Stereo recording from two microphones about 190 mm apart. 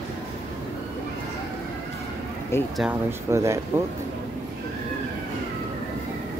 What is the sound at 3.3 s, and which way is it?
Speech, 15° right (ahead or behind).